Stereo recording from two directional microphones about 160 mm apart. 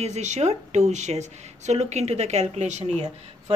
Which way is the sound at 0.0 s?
45° right (ahead or behind).